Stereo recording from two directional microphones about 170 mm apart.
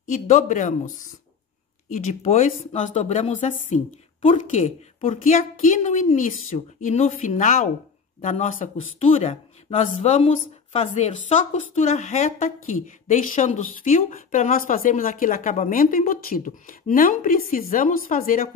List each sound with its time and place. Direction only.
0.1 s a woman's voice: 45° left (ahead or behind)
9.0 s a woman's voice: 35° left (ahead or behind); by 18.5 s 55° left (ahead or behind)